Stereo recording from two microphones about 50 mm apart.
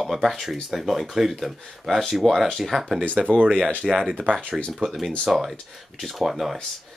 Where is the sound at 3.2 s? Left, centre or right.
Right.